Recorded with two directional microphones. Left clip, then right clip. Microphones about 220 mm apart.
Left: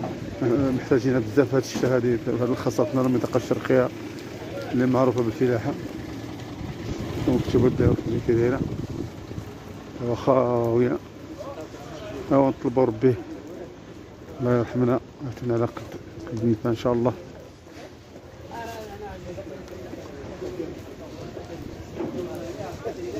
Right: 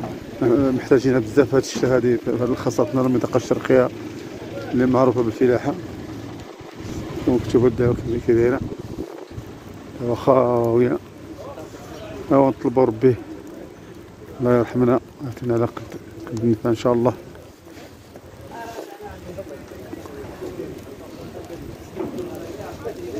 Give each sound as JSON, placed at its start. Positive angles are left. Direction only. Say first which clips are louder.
{"t": 0.4, "sound": "a man's voice", "louder": "right 5 dB", "side_deg": -10}
{"t": 7.3, "sound": "speech", "louder": "right 4 dB", "side_deg": -5}
{"t": 10.0, "sound": "a man's voice", "louder": "right 4 dB", "side_deg": -5}
{"t": 12.3, "sound": "a man's voice", "louder": "right 4 dB", "side_deg": -5}
{"t": 14.4, "sound": "speech", "louder": "right 5 dB", "side_deg": -10}